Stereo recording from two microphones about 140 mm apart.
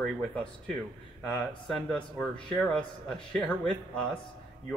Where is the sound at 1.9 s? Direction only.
10° left (ahead or behind).